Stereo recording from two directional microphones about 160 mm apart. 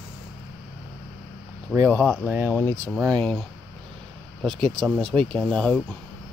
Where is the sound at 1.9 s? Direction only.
10° left (ahead or behind).